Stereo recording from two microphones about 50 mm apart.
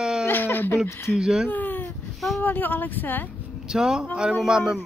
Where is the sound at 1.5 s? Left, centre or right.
Left.